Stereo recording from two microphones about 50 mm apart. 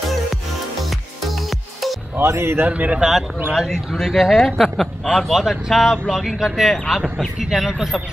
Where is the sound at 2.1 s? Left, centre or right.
Right.